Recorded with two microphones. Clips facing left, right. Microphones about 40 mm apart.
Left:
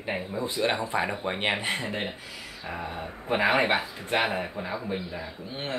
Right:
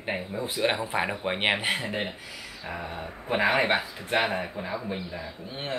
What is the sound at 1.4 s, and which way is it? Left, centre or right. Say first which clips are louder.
Speech: right 3 dB; right.